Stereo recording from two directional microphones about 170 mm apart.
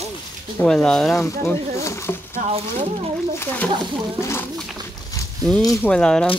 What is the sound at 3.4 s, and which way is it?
Speech, 10° left (ahead or behind).